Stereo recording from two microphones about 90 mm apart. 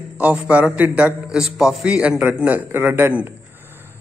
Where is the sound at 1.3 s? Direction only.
5° right (ahead or behind).